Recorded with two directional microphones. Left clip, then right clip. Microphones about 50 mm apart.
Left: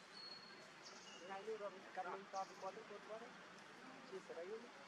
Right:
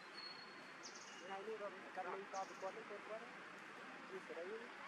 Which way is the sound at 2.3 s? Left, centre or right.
Right.